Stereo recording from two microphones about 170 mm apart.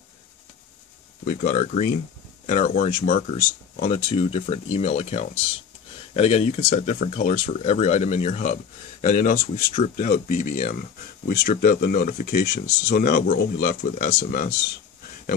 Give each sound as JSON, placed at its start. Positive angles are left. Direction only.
{"t": 1.2, "sound": "speech", "side_deg": 45}
{"t": 9.0, "sound": "speech", "side_deg": 50}
{"t": 11.2, "sound": "speech", "side_deg": 65}